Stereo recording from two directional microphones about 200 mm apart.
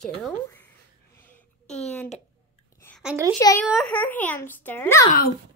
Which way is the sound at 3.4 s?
20° left (ahead or behind).